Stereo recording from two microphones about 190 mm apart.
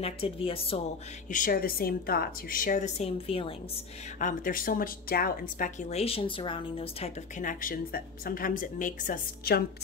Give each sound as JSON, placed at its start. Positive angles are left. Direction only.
{"t": 0.0, "sound": "speech", "side_deg": 30}
{"t": 1.3, "sound": "a woman's voice", "side_deg": 45}
{"t": 4.2, "sound": "speech", "side_deg": 45}
{"t": 7.4, "sound": "a woman's voice", "side_deg": 50}